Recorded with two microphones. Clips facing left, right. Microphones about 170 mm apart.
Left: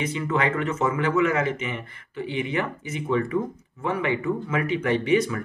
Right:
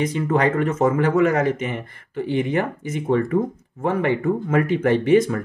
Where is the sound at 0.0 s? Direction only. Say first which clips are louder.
Right 5 dB; 45° right (ahead or behind).